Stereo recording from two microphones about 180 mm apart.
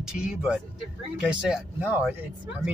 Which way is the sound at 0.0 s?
5° right (ahead or behind).